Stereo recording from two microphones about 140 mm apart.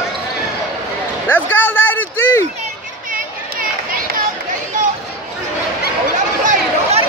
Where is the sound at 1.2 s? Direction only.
10° left (ahead or behind).